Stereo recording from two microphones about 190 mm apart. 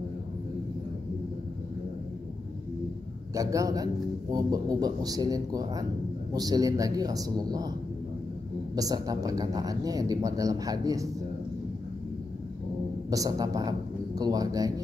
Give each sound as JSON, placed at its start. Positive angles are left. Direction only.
{"t": 3.3, "sound": "a man's voice", "side_deg": -15}
{"t": 8.7, "sound": "a man's voice", "side_deg": -20}
{"t": 13.1, "sound": "speech", "side_deg": -20}